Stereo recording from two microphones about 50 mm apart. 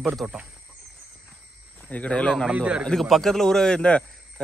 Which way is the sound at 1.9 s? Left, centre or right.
Left.